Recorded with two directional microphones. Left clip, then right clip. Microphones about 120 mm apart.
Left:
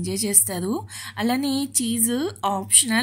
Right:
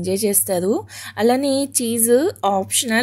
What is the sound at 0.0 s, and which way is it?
A woman's voice, 25° right (ahead or behind).